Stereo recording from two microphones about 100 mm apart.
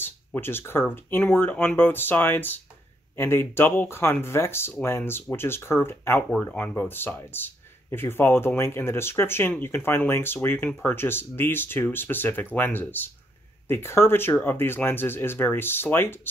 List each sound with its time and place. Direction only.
0.0 s speech: 20° left (ahead or behind)